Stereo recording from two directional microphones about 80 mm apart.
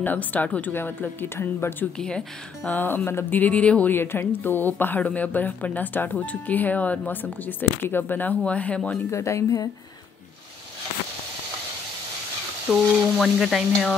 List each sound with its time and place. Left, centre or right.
0.0 s speech: left
2.0 s speech: centre
2.7 s speech: left
3.9 s speech: left
9.1 s speech: left
12.7 s sizzle: centre